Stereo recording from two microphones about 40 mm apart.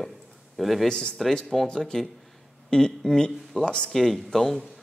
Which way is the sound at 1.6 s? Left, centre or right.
Centre.